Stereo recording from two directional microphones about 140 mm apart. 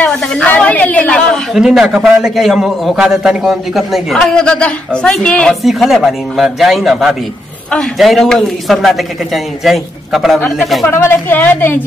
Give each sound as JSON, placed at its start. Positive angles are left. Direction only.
{"t": 0.0, "sound": "a woman's voice", "side_deg": 5}
{"t": 10.9, "sound": "a woman's voice", "side_deg": 15}